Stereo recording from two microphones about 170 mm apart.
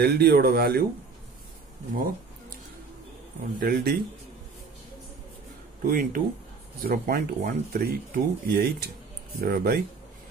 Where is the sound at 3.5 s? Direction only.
60° right (ahead or behind).